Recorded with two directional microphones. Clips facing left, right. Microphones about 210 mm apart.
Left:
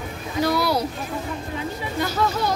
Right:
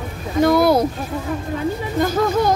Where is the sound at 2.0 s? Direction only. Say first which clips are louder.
Right 6 dB; 50° right (ahead or behind).